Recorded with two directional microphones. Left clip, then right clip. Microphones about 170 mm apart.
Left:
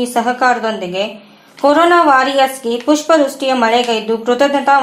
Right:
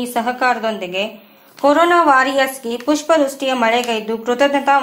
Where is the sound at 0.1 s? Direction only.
30° right (ahead or behind).